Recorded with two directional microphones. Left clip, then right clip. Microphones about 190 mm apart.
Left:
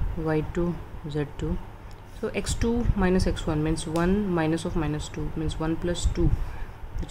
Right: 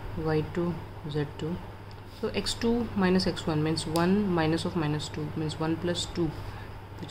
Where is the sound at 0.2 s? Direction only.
25° left (ahead or behind).